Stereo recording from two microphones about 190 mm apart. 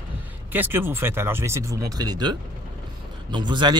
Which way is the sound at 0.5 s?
10° right (ahead or behind).